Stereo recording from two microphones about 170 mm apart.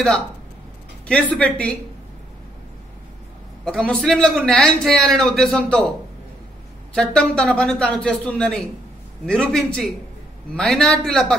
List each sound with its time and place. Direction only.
1.0 s a man's voice: 5° left (ahead or behind)
3.6 s speech: 5° left (ahead or behind)
6.9 s a man's voice: 5° left (ahead or behind)